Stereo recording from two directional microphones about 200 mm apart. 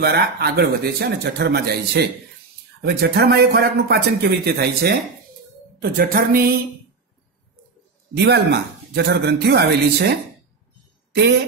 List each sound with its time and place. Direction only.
0.0 s a man's voice: 55° right (ahead or behind)
8.2 s speech: 55° right (ahead or behind)